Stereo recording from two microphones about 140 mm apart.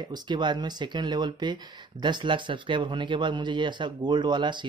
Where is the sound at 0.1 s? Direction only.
35° right (ahead or behind).